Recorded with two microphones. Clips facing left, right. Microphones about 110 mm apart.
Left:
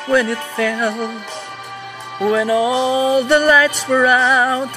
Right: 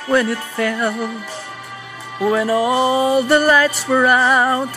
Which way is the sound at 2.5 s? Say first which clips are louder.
Even; 40° right (ahead or behind).